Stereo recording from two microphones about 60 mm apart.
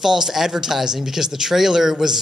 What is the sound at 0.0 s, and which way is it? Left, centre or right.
Speech, centre.